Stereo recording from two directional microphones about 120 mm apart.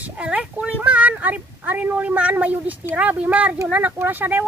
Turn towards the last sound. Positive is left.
turn(degrees=-15)  # may be behind; listen again after turning